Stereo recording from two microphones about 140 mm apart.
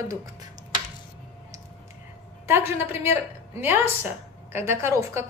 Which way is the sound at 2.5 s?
15° right (ahead or behind).